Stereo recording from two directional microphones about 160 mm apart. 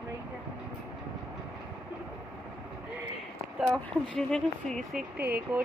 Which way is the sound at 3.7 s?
5° left (ahead or behind).